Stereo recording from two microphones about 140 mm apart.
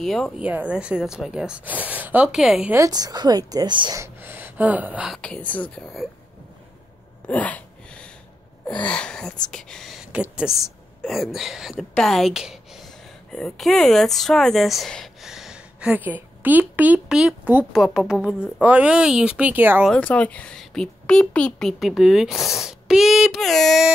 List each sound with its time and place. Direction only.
0.0 s speech: centre (ahead or behind)
0.4 s a woman's voice: 10° right (ahead or behind)
2.7 s a woman's voice: 25° right (ahead or behind)
4.0 s speech: 15° right (ahead or behind)
5.2 s speech: 10° left (ahead or behind)
7.2 s a sound: 10° left (ahead or behind)
8.6 s speech: 10° left (ahead or behind); by 19.9 s 15° right (ahead or behind)
19.9 s speech: 10° left (ahead or behind)